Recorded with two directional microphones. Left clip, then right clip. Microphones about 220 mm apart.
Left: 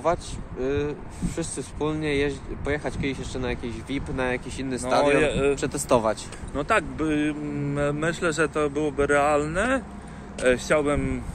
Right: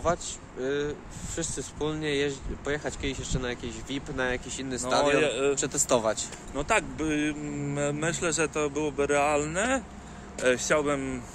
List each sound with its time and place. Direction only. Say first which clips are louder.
0.0 s speech: left 3 dB; 5° left (ahead or behind)
5.0 s speech: left 3 dB; 10° right (ahead or behind)
5.6 s speech: left 3 dB; 5° left (ahead or behind)
6.5 s speech: left 3 dB; 20° right (ahead or behind)
10.4 s speech: left 3 dB; 5° right (ahead or behind)